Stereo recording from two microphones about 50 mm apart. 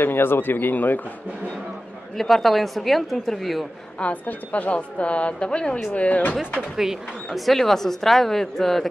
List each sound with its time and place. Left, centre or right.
0.0 s speech: left
2.1 s a woman's voice: centre
4.0 s a woman's voice: left
6.8 s speech: centre